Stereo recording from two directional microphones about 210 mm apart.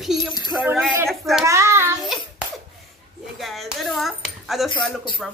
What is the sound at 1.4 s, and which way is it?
Child singing, 15° right (ahead or behind).